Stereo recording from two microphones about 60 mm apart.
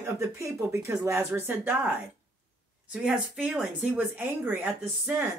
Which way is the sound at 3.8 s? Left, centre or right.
Right.